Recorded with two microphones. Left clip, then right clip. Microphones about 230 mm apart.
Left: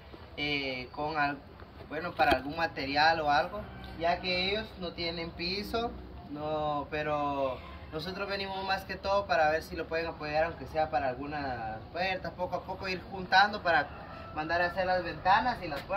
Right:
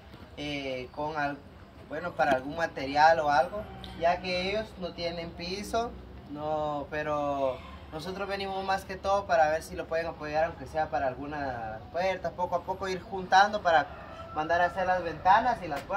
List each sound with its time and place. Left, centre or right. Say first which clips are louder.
0.4 s a man's voice: left 2 dB; centre; by 15.0 s right